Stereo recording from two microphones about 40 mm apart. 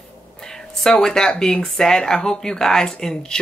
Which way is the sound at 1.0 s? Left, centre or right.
Centre.